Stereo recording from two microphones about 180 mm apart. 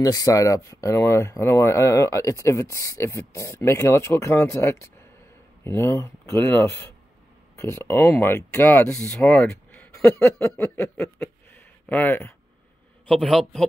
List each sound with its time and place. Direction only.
0.0 s a man's voice: 20° left (ahead or behind); by 13.7 s 5° left (ahead or behind)